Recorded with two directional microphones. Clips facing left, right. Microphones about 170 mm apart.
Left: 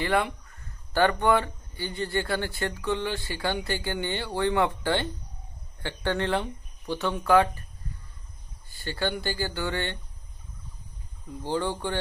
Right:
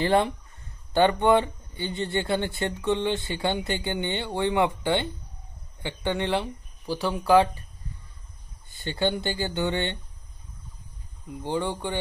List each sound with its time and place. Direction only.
0.0 s speech: 30° right (ahead or behind)
8.6 s speech: 20° right (ahead or behind)
11.2 s speech: 15° right (ahead or behind)